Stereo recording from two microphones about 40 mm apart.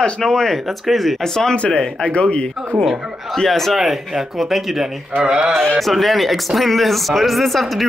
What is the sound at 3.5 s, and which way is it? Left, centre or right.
Speech, centre.